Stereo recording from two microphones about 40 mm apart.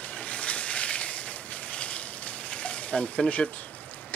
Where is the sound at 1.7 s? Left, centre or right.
Left.